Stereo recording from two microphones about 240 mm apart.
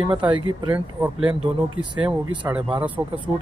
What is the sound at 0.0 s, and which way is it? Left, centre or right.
Speech, centre.